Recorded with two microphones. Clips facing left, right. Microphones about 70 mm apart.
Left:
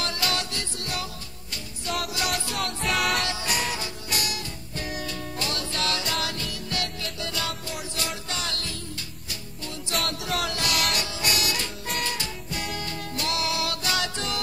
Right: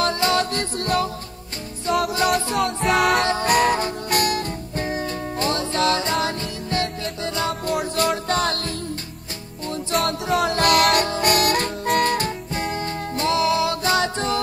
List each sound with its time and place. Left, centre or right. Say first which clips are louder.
0.0 s music: right 9 dB; right
2.1 s music: right 9 dB; right
7.6 s music: right 12 dB; right
10.3 s music: right 11 dB; right